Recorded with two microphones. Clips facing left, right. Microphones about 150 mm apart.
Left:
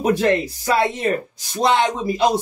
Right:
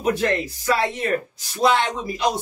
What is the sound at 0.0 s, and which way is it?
Music, 30° left (ahead or behind).